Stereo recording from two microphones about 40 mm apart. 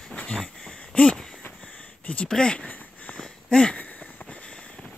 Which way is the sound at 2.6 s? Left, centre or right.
Left.